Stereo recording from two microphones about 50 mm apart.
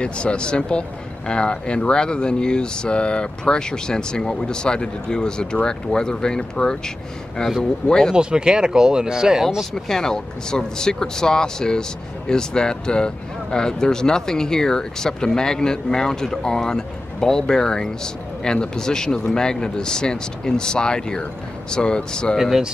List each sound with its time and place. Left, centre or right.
0.0 s speech: left
8.1 s speech: centre
9.6 s speech: centre